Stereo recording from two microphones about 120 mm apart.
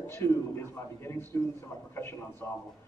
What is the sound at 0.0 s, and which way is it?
A man's voice, 20° left (ahead or behind).